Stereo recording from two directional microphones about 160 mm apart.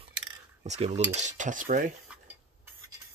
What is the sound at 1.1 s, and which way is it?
Cutlery, 50° right (ahead or behind).